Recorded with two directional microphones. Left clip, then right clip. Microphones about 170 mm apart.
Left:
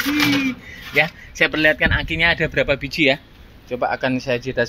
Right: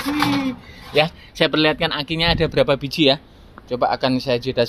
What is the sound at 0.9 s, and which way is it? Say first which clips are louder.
Speech: even; 20° right (ahead or behind).